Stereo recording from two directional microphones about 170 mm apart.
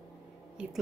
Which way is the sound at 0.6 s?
5° right (ahead or behind).